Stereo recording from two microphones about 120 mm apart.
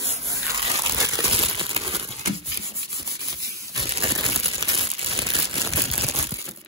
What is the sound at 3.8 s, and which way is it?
Crumpling, 50° right (ahead or behind).